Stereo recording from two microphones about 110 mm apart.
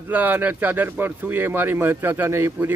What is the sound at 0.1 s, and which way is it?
Speech, 15° right (ahead or behind).